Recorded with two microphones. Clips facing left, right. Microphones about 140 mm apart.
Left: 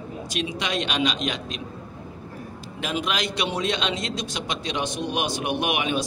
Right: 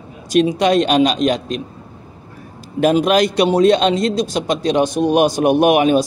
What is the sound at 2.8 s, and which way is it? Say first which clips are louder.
Speech: right 14 dB; 45° right (ahead or behind).